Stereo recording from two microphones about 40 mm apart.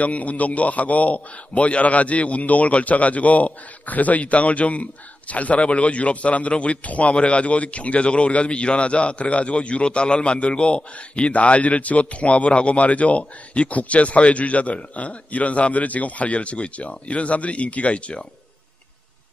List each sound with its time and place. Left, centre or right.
0.0 s a man's voice: left